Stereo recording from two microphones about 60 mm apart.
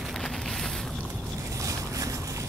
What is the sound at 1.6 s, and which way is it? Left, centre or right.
Boat, right.